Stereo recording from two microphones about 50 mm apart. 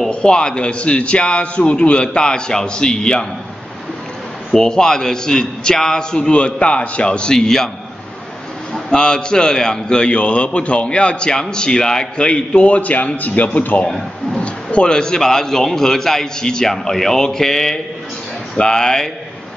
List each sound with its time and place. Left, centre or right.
0.1 s a man's voice: centre
4.5 s a man's voice: centre
8.7 s a man's voice: centre
13.8 s speech: centre
14.4 s a man's voice: left